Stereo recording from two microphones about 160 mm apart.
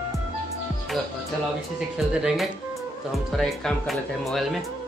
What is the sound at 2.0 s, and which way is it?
Speech, 5° right (ahead or behind).